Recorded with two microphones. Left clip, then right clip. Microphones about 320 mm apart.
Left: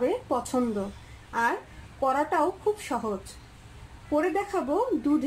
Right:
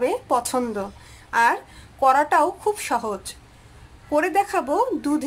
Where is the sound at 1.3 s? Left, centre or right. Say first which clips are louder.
Right 8 dB; right.